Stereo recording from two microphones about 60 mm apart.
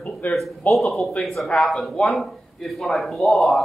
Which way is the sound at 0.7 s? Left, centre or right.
Centre.